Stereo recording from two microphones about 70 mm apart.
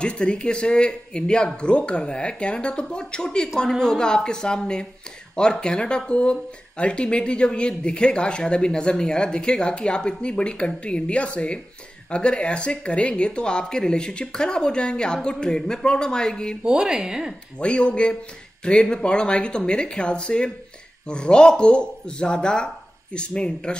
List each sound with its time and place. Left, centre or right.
0.0 s speech: centre
16.6 s speech: centre
17.6 s speech: centre